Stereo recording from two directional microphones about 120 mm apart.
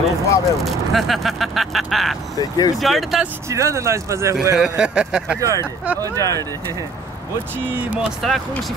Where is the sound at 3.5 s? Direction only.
25° right (ahead or behind).